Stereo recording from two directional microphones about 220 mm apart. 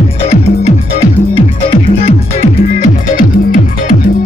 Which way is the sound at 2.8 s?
35° left (ahead or behind).